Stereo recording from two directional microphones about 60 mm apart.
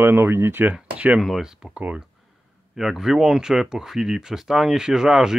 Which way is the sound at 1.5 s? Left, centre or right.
Centre.